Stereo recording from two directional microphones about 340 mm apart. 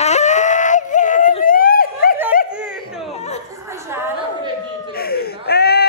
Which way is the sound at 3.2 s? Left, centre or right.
Centre.